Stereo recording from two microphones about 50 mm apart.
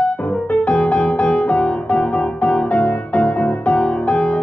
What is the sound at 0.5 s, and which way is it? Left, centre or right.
Music, left.